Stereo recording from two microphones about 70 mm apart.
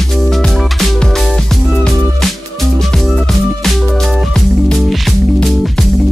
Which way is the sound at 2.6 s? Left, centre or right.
Centre.